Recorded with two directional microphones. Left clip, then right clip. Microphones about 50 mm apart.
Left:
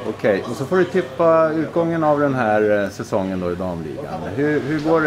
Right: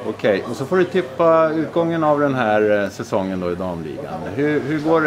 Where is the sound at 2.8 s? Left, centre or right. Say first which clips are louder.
Even; centre.